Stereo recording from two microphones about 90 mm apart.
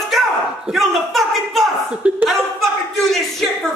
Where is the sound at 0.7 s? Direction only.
Centre (ahead or behind).